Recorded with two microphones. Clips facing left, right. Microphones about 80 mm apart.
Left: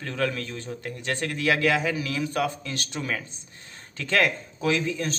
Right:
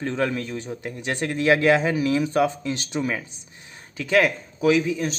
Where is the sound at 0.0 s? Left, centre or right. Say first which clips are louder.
Right 4 dB; right.